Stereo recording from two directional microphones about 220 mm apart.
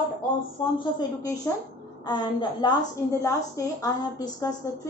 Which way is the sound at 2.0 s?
20° left (ahead or behind).